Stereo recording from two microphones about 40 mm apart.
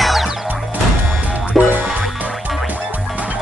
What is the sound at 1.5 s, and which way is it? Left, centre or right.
Music, right.